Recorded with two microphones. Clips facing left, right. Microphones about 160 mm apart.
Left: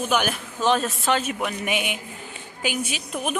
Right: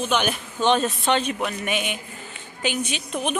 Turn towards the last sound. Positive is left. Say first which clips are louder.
# right 2 dB
turn(degrees=5)  # may be behind; listen again after turning